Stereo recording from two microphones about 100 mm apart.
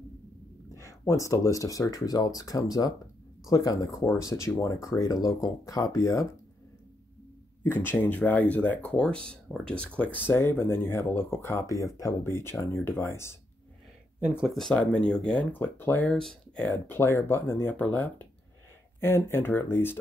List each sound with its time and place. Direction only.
0.7 s speech: 30° left (ahead or behind)
7.6 s speech: 20° left (ahead or behind)
14.2 s speech: 10° right (ahead or behind)
15.5 s speech: 20° left (ahead or behind)
16.1 s speech: 5° left (ahead or behind)
16.6 s speech: 20° left (ahead or behind)